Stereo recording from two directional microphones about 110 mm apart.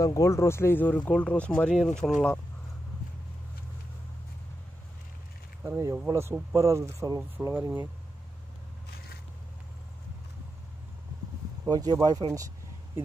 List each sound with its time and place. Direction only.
0.0 s speech: 30° left (ahead or behind); by 2.4 s 10° left (ahead or behind)
5.6 s speech: 25° right (ahead or behind)
11.6 s speech: 35° right (ahead or behind)